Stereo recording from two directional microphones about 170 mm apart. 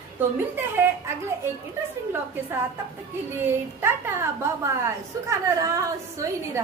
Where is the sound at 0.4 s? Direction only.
15° right (ahead or behind).